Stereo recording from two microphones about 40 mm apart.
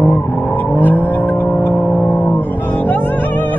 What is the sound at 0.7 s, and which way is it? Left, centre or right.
Vehicle, left.